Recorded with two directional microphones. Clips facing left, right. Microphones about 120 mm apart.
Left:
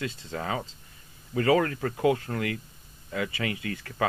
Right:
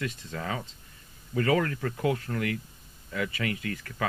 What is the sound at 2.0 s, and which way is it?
Speech, 25° left (ahead or behind).